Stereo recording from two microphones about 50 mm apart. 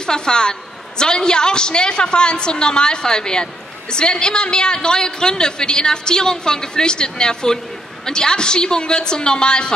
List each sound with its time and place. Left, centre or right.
0.0 s a man's voice: centre